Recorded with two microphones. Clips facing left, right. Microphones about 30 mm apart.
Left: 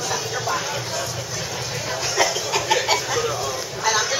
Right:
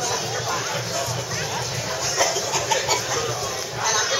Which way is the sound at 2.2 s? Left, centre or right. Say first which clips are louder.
Left 2 dB; centre.